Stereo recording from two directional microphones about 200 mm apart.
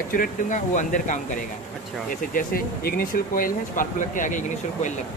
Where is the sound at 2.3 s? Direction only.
45° left (ahead or behind).